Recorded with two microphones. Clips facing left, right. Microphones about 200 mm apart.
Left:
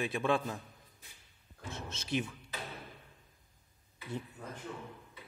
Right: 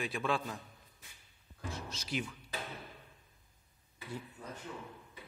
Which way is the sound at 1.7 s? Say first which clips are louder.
Left 4 dB; 25° left (ahead or behind).